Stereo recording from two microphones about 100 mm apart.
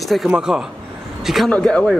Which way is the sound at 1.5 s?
10° left (ahead or behind).